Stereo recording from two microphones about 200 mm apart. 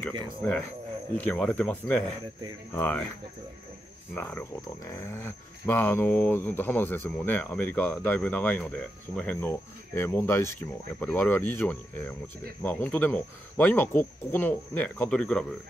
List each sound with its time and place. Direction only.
0.4 s speech: 5° left (ahead or behind)
4.1 s speech: 10° left (ahead or behind)